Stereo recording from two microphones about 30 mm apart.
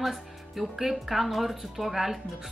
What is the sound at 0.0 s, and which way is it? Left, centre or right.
A woman's voice, centre.